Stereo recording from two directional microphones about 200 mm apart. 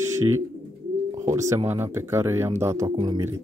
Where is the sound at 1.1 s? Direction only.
15° right (ahead or behind).